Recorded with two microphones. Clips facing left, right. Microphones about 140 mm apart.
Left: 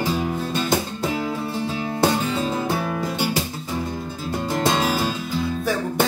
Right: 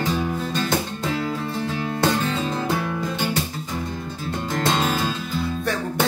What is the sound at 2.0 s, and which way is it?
Music, 10° left (ahead or behind).